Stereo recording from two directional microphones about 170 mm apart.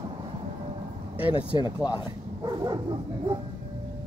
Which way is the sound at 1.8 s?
5° right (ahead or behind).